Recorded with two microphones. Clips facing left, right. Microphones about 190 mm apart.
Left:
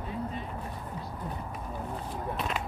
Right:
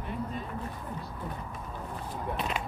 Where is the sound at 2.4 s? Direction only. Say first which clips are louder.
Even; centre (ahead or behind).